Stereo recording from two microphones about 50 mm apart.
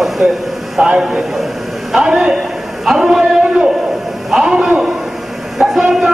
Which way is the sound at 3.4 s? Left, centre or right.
Right.